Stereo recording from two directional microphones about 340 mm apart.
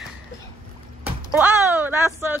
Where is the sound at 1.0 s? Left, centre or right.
Centre.